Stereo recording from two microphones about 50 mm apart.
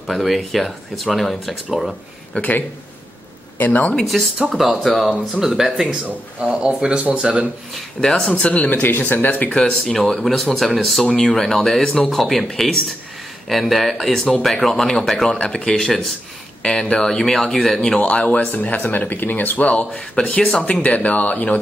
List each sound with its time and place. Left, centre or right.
0.0 s speech: centre
2.3 s speech: left
3.5 s speech: left
4.5 s speech: centre
6.0 s a man's voice: right
8.3 s speech: left
8.8 s speech: left
9.5 s speech: centre
9.9 s speech: centre
17.9 s speech: left
20.5 s speech: centre
20.8 s speech: left